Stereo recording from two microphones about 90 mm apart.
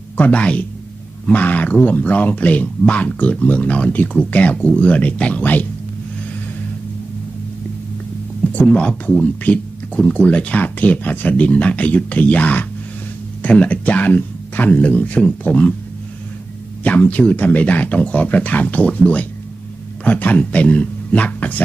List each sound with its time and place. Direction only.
0.2 s speech: 15° left (ahead or behind)
8.5 s speech: 15° left (ahead or behind)
16.8 s speech: 15° left (ahead or behind)